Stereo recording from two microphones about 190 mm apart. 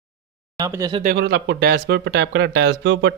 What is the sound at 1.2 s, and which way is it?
Speech, 60° right (ahead or behind).